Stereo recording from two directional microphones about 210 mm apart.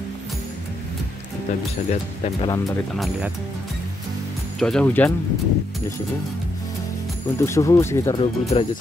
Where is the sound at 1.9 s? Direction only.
35° left (ahead or behind).